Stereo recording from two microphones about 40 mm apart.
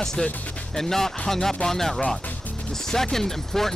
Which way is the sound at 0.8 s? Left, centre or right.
Centre.